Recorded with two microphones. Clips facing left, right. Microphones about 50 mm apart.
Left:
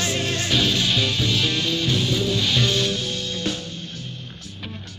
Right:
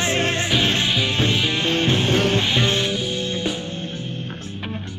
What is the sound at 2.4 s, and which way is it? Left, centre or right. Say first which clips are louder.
Music: right 1 dB; right.